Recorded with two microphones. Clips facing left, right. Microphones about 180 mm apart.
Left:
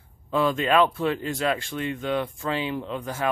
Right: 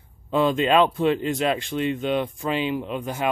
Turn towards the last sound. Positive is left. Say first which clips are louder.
# right 2 dB
turn(degrees=-15)  # may be behind; listen again after turning